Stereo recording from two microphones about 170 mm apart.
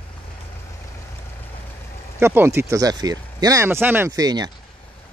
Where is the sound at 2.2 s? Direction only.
15° right (ahead or behind).